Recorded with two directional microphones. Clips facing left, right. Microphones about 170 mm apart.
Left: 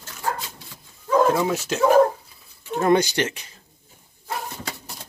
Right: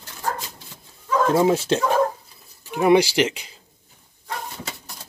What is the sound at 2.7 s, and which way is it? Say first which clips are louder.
Speech: right 3 dB; 10° right (ahead or behind).